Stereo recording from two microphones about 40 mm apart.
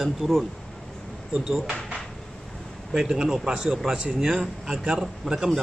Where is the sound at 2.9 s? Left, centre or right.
Centre.